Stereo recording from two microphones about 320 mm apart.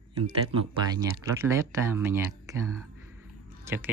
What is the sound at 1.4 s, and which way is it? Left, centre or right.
Speech, centre.